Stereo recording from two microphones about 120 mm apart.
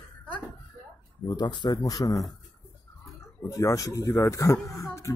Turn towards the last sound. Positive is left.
turn(degrees=25)  # may be behind; listen again after turning